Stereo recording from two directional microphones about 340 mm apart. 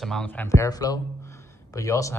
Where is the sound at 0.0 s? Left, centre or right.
Centre.